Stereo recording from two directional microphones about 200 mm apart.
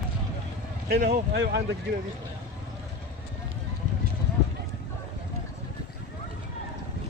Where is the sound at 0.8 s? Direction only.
50° right (ahead or behind).